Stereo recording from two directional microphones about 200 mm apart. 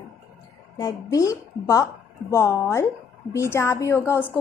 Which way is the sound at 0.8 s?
15° left (ahead or behind).